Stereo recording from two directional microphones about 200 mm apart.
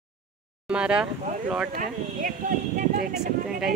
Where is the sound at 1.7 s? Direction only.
40° right (ahead or behind).